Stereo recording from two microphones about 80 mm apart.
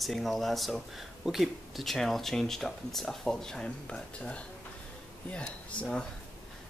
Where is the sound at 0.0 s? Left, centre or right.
Centre.